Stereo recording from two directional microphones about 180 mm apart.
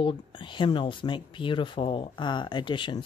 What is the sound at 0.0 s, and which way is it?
Speech, 25° left (ahead or behind).